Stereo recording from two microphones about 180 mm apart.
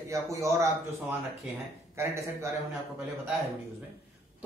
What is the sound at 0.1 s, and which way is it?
Speech, 15° right (ahead or behind).